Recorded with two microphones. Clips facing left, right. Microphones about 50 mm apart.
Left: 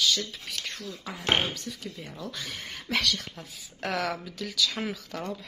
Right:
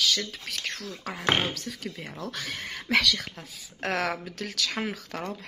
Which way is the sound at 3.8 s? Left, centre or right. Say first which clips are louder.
Right 2 dB; right.